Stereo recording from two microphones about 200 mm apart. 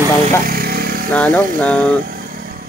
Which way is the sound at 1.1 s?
5° left (ahead or behind).